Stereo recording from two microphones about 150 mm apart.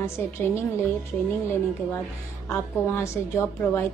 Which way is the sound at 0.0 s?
15° left (ahead or behind).